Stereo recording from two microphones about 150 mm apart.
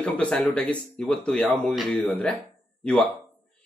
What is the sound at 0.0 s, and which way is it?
Speech, 10° left (ahead or behind).